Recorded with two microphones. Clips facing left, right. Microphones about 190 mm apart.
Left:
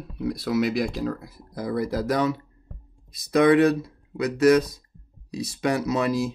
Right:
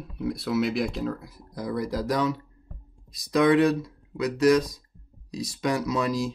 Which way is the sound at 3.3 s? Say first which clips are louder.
Left 2 dB; 55° left (ahead or behind).